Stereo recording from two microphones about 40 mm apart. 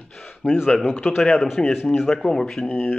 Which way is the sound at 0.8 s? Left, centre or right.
Left.